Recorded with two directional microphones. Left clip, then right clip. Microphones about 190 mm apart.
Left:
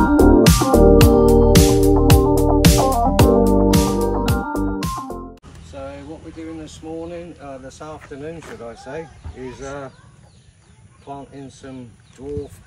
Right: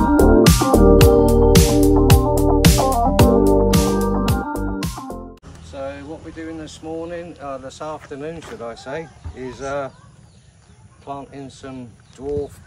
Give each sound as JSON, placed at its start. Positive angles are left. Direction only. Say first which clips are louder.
{"t": 0.0, "sound": "music", "louder": "even", "side_deg": 0}
{"t": 8.2, "sound": "speech", "louder": "right 2 dB", "side_deg": -5}
{"t": 11.1, "sound": "speech", "louder": "right 3 dB", "side_deg": -15}